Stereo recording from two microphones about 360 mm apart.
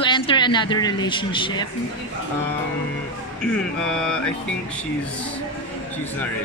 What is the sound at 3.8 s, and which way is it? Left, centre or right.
Mantra, centre.